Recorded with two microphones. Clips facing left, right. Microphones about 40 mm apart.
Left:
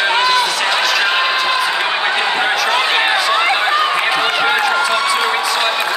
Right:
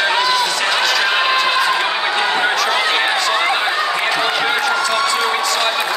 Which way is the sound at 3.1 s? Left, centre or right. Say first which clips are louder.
Left 2 dB; centre.